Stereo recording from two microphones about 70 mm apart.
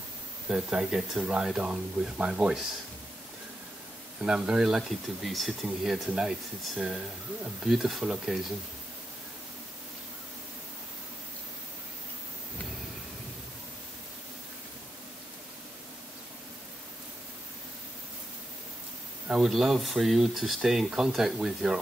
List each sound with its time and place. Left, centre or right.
0.5 s speech: centre
4.2 s speech: centre
19.2 s speech: centre